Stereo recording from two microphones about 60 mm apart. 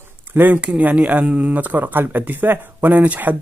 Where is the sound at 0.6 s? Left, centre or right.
Right.